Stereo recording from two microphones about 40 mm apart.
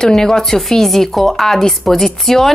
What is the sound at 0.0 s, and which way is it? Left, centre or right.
A woman's voice, centre.